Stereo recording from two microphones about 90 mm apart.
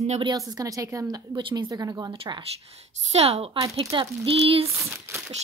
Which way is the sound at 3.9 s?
90° right.